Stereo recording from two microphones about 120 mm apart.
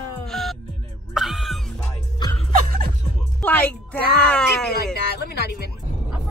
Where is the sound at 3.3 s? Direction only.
15° left (ahead or behind).